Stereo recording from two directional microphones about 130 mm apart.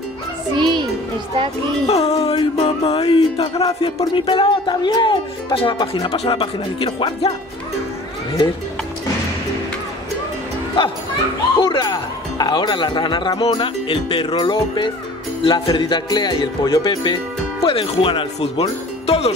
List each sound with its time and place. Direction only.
0.6 s music: 35° right (ahead or behind)
1.9 s music: 55° left (ahead or behind)
4.0 s speech: 40° left (ahead or behind)
11.6 s speech: 35° left (ahead or behind)
17.6 s music: 45° left (ahead or behind)